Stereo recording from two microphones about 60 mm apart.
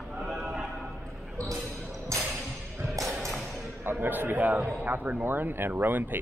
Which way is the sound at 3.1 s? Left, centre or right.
Centre.